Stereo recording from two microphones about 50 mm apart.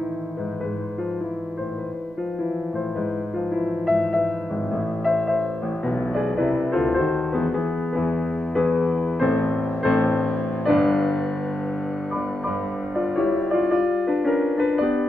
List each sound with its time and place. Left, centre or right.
3.5 s music: centre
4.0 s music: centre; by 10.2 s left
10.6 s music: centre
13.1 s music: centre